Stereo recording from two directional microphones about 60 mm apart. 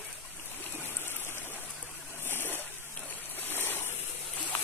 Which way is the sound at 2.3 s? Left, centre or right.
Left.